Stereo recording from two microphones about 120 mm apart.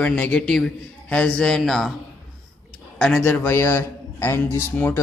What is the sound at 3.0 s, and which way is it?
Speech, 5° left (ahead or behind).